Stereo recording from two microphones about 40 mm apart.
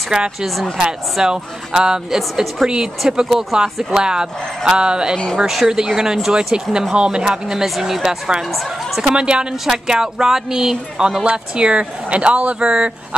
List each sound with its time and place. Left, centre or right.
0.1 s speech: right
5.5 s speech: centre
7.6 s speech: centre
9.0 s speech: right
11.2 s speech: right